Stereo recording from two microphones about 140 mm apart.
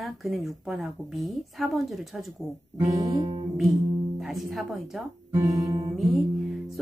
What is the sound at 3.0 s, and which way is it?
Music, 25° right (ahead or behind).